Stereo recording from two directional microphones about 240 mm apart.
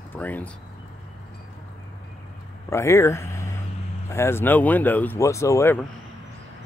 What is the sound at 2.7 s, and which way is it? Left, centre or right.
Speech, centre.